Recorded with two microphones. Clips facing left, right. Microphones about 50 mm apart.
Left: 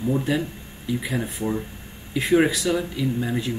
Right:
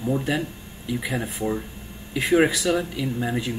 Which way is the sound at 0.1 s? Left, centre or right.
Centre.